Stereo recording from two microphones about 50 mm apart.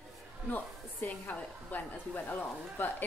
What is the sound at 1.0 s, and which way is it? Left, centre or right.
A woman's voice, left.